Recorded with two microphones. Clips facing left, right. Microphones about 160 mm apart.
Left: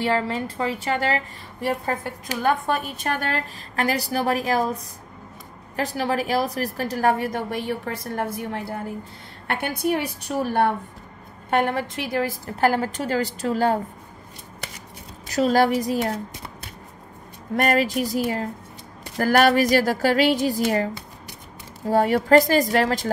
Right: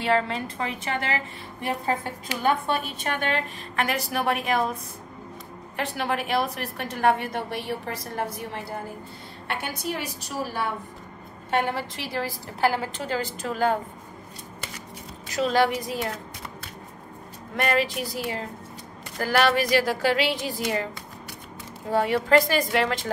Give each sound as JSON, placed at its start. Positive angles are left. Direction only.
{"t": 0.6, "sound": "a woman's voice", "side_deg": 30}
{"t": 5.8, "sound": "a woman's voice", "side_deg": 40}
{"t": 15.2, "sound": "a woman's voice", "side_deg": 40}
{"t": 17.6, "sound": "a woman's voice", "side_deg": 40}
{"t": 21.9, "sound": "a woman's voice", "side_deg": 40}